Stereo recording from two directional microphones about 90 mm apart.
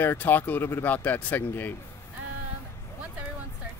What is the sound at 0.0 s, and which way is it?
Speech, 25° left (ahead or behind).